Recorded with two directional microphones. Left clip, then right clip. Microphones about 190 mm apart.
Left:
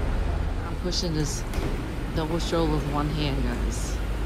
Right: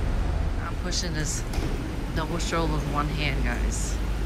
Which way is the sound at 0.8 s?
30° left (ahead or behind).